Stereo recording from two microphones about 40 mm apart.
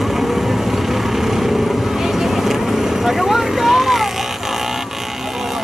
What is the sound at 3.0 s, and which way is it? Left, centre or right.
Vehicle, centre.